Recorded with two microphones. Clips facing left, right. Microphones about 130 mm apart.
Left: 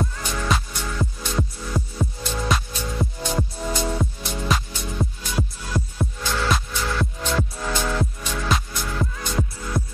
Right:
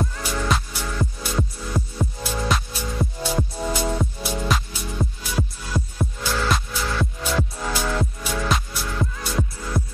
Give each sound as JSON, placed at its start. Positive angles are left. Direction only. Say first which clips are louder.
{"t": 0.0, "sound": "music", "louder": "right 1 dB", "side_deg": 0}